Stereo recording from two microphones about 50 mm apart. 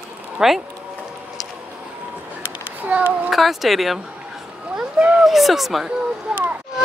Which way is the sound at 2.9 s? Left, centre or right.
Right.